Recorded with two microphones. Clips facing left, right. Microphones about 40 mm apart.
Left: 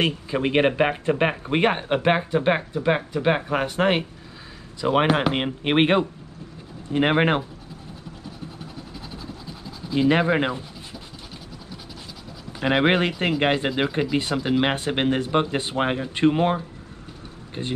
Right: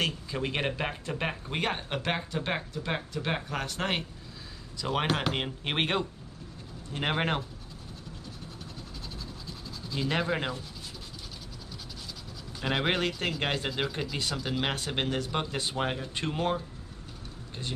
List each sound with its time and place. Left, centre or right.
0.0 s speech: left
9.1 s scratch: centre
12.5 s speech: left